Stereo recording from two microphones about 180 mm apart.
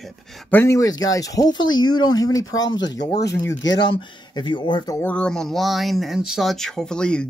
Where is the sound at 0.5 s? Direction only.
15° left (ahead or behind).